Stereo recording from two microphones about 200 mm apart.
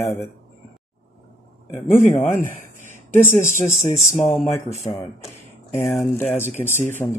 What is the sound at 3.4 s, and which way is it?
Speech, 35° left (ahead or behind).